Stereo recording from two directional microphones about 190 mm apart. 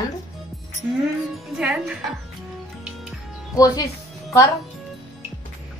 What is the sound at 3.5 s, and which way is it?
Speech, 20° left (ahead or behind).